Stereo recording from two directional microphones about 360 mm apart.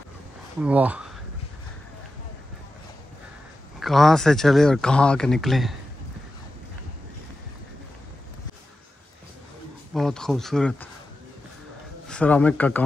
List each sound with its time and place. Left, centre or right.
0.6 s speech: centre
3.8 s speech: centre
9.9 s speech: centre
12.1 s speech: centre